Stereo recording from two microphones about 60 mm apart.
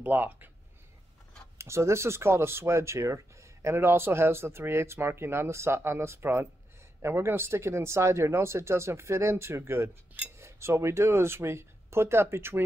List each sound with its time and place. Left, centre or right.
0.0 s speech: right
1.6 s speech: right